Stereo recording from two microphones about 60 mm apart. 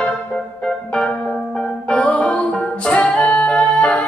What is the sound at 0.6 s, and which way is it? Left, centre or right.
Music, centre.